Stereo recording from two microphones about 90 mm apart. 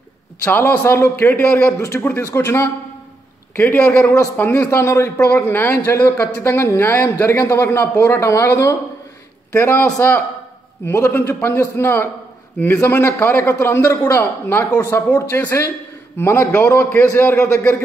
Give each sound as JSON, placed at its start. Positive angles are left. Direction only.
{"t": 0.5, "sound": "speech", "side_deg": 25}
{"t": 1.8, "sound": "a man's voice", "side_deg": 35}
{"t": 3.5, "sound": "speech", "side_deg": 20}
{"t": 4.0, "sound": "a man's voice", "side_deg": 35}
{"t": 10.9, "sound": "a man's voice", "side_deg": 30}